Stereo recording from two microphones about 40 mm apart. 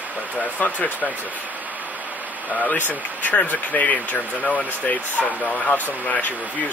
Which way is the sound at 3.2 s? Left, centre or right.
Left.